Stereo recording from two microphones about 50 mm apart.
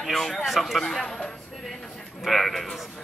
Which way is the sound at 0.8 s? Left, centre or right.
Centre.